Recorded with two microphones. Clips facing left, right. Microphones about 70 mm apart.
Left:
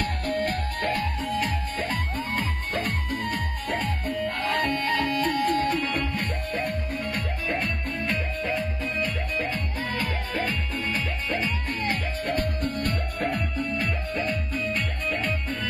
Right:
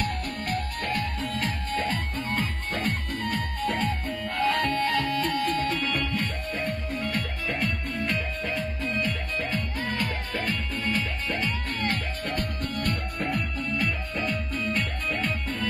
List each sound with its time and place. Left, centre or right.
0.0 s music: left
4.4 s music: left
4.6 s music: left
12.3 s music: left
14.7 s music: centre